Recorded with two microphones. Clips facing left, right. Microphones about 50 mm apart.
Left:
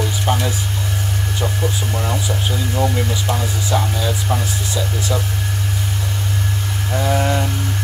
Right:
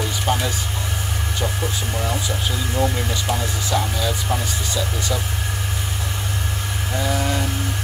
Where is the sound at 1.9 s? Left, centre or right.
Centre.